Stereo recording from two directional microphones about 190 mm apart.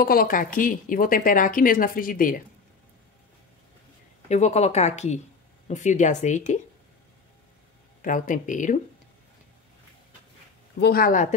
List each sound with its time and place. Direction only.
0.0 s a woman's voice: 50° left (ahead or behind)
4.3 s speech: 35° left (ahead or behind)
8.0 s a woman's voice: 45° left (ahead or behind)
10.8 s a woman's voice: 50° left (ahead or behind)